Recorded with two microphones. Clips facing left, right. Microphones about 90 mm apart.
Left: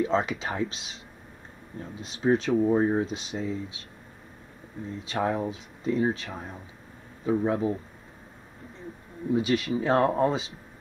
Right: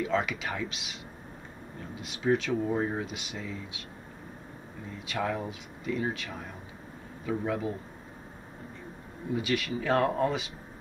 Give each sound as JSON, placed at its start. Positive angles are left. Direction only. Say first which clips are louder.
{"t": 0.0, "sound": "speech", "louder": "left 3 dB", "side_deg": 30}
{"t": 2.0, "sound": "speech", "louder": "left 3 dB", "side_deg": 30}
{"t": 5.0, "sound": "speech", "louder": "left 4 dB", "side_deg": 30}
{"t": 9.3, "sound": "speech", "louder": "left 5 dB", "side_deg": 30}